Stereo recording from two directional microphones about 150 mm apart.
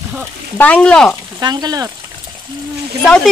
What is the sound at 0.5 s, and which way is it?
Speech, 10° left (ahead or behind).